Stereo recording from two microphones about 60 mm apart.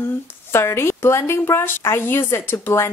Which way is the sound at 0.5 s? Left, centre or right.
Left.